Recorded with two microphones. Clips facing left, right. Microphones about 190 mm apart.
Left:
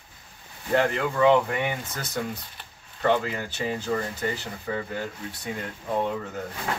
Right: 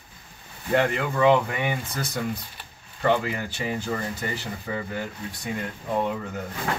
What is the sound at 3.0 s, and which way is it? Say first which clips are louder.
Speech: right 1 dB; 10° right (ahead or behind).